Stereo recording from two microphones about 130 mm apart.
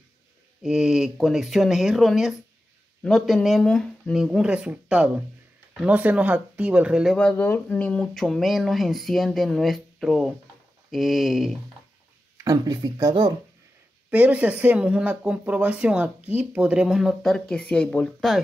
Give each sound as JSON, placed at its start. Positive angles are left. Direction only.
{"t": 0.6, "sound": "speech", "side_deg": -5}
{"t": 7.2, "sound": "speech", "side_deg": 10}
{"t": 12.4, "sound": "speech", "side_deg": -30}
{"t": 14.1, "sound": "speech", "side_deg": -10}